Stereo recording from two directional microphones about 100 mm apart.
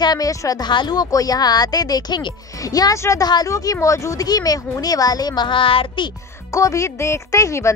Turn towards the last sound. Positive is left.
turn(degrees=30)  # may be behind; listen again after turning